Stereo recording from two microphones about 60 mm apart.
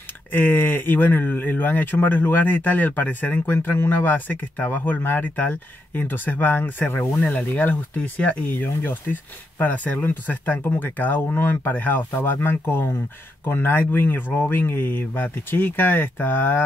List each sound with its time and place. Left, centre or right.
0.3 s speech: left